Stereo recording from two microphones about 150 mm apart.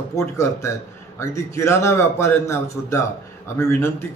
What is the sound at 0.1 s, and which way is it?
A man's voice, 20° left (ahead or behind).